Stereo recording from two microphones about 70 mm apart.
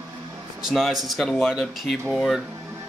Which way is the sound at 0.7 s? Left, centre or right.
Centre.